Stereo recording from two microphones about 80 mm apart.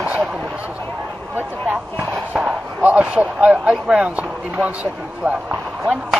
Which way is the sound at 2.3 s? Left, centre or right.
Centre.